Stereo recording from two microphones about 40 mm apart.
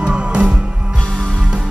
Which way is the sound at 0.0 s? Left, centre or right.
Right.